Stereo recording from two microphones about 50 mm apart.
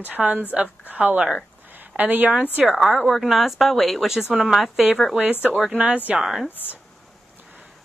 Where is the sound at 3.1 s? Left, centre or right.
Centre.